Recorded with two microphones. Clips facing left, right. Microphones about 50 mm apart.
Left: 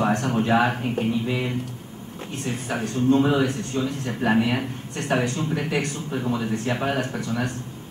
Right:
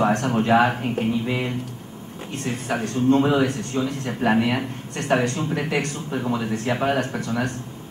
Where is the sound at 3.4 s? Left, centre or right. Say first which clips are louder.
Right 1 dB; centre.